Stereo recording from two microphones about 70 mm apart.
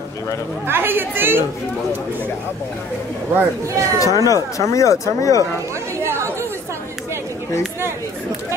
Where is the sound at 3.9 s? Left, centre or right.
Left.